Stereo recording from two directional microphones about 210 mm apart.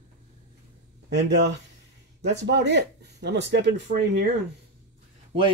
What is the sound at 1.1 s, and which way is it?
Speech, 55° right (ahead or behind).